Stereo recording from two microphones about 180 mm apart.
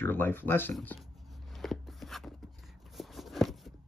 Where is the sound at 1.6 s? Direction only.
Centre (ahead or behind).